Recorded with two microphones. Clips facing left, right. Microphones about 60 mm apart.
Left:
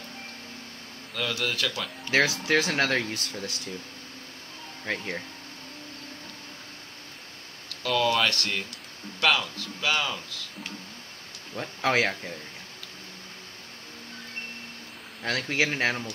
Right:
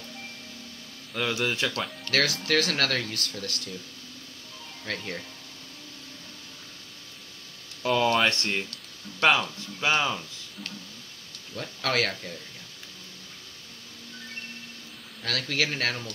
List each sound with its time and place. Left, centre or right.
1.1 s speech: centre
1.6 s speech: centre
2.0 s speech: left
4.8 s speech: left
7.8 s speech: right
11.5 s speech: left
15.2 s speech: left